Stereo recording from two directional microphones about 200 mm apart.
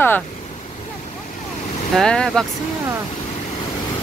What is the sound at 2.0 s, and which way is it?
Speech, 5° left (ahead or behind).